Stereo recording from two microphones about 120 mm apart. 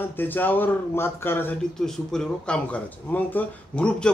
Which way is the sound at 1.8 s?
5° left (ahead or behind).